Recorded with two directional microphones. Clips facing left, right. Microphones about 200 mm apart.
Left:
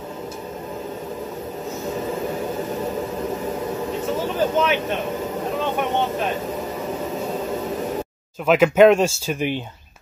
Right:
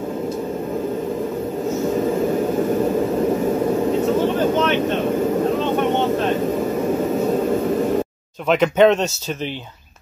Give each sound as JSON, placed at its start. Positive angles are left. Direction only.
{"t": 8.5, "sound": "speech", "side_deg": 5}